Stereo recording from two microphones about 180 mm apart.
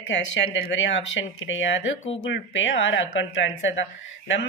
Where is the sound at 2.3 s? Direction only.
90° left.